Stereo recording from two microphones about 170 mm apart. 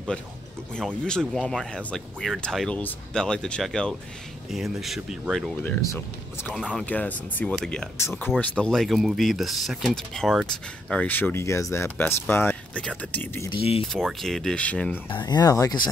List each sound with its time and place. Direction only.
0.7 s speech: 5° left (ahead or behind)
5.8 s speech: 15° left (ahead or behind)
6.4 s speech: 5° left (ahead or behind)
8.0 s speech: 15° left (ahead or behind)
13.5 s speech: 35° left (ahead or behind)
14.2 s speech: centre (ahead or behind)
15.0 s speech: 25° left (ahead or behind)